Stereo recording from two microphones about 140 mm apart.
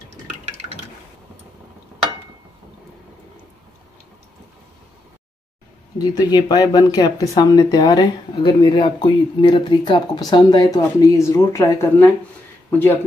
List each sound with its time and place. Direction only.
0.1 s drip: 50° right (ahead or behind)
5.9 s speech: 30° left (ahead or behind)